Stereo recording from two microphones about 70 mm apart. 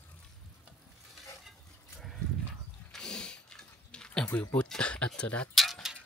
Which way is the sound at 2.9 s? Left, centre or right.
Centre.